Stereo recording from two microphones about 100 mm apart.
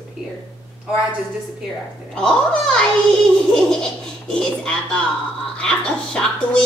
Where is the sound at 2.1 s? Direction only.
10° left (ahead or behind).